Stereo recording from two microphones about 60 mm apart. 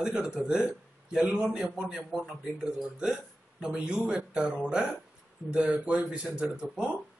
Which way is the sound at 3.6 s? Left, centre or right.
Centre.